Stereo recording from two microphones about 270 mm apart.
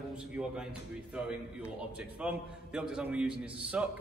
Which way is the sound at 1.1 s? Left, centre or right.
Centre.